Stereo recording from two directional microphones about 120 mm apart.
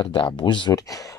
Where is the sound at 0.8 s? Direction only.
30° left (ahead or behind).